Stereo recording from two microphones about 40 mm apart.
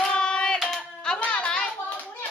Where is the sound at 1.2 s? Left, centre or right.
Left.